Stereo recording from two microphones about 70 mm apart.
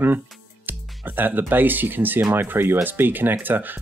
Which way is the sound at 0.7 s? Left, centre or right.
Right.